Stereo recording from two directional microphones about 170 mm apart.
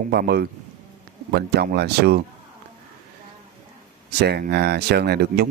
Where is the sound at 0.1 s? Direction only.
70° right (ahead or behind).